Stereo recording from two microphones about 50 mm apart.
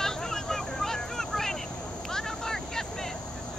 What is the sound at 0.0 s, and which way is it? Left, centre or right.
Vehicle, centre.